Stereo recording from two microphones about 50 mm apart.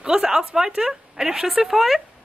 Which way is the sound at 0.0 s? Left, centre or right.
Centre.